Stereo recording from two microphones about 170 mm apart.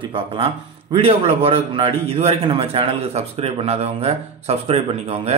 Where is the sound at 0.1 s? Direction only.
30° right (ahead or behind).